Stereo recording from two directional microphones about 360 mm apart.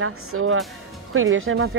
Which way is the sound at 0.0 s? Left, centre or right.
Right.